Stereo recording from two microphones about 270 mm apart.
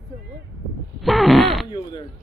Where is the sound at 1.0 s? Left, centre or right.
Centre.